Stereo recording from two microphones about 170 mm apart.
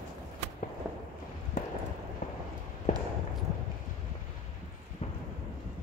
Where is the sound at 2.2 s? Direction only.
50° left (ahead or behind).